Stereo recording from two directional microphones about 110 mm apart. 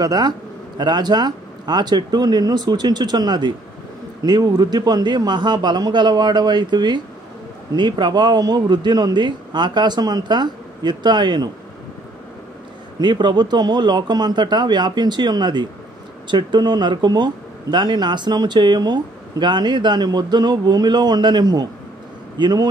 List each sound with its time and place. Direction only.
0.0 s speech: 35° right (ahead or behind)
13.0 s speech: 45° right (ahead or behind)